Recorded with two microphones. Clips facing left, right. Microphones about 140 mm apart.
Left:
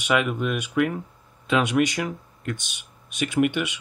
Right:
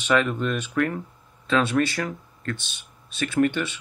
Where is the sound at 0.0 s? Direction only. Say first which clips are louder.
Right 1 dB; 10° left (ahead or behind).